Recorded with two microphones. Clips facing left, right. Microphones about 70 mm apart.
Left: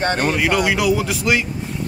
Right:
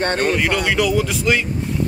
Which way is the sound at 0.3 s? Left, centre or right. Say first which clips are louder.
Left 1 dB; centre.